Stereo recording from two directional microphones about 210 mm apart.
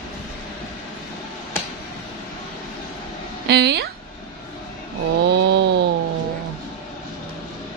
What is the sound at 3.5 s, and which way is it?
Speech, 50° right (ahead or behind).